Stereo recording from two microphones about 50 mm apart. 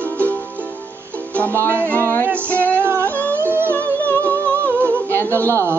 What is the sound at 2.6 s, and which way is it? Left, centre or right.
Music, right.